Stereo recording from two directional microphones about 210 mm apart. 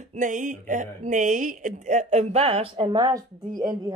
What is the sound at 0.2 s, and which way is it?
Speech, 35° right (ahead or behind).